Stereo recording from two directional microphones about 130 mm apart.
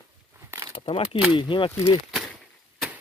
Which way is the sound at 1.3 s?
40° left (ahead or behind).